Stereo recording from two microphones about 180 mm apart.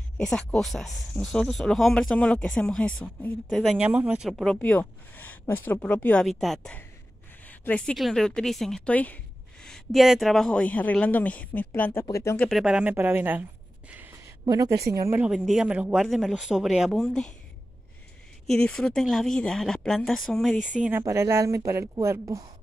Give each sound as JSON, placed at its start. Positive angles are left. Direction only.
{"t": 0.2, "sound": "a woman's voice", "side_deg": 5}
{"t": 12.4, "sound": "speech", "side_deg": 0}
{"t": 14.4, "sound": "speech", "side_deg": -20}
{"t": 18.5, "sound": "speech", "side_deg": 5}
{"t": 20.9, "sound": "a woman's voice", "side_deg": -15}